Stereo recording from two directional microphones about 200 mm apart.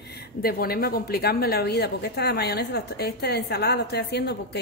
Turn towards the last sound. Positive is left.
turn(degrees=55)  # may be behind; listen again after turning